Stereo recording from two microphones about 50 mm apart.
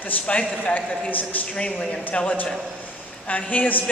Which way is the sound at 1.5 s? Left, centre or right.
Left.